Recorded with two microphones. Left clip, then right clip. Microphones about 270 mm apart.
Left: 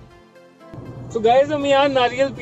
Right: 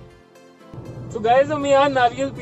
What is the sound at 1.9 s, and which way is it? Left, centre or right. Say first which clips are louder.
Speech: left 1 dB; centre.